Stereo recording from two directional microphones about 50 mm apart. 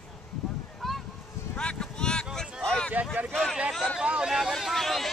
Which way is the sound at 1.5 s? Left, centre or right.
Centre.